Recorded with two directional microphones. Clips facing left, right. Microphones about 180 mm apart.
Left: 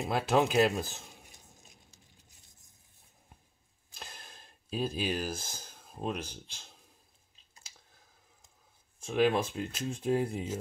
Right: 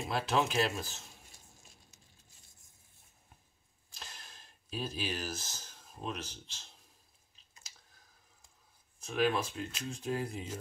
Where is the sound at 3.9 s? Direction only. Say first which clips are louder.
Left 3 dB; 55° left (ahead or behind).